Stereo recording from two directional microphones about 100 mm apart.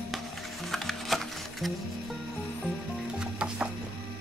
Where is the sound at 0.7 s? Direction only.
Centre (ahead or behind).